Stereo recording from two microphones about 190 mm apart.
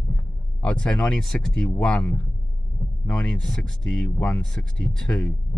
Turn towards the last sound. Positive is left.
turn(degrees=5)  # may be behind; listen again after turning